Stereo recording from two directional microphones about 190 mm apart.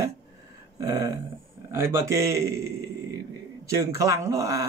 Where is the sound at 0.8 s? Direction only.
15° right (ahead or behind).